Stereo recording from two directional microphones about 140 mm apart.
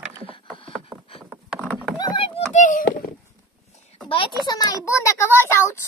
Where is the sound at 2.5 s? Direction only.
65° left (ahead or behind).